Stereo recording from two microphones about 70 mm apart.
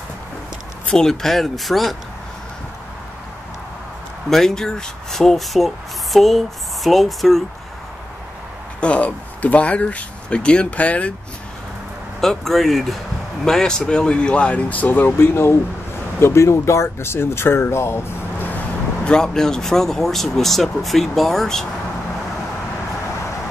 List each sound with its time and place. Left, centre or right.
0.8 s speech: centre
4.3 s speech: centre
8.8 s speech: centre
12.2 s speech: centre; by 18.5 s left
19.0 s speech: centre